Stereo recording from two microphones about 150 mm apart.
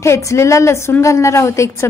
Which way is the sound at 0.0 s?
20° left (ahead or behind).